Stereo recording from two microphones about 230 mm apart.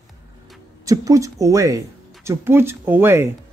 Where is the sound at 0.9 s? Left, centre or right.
Centre.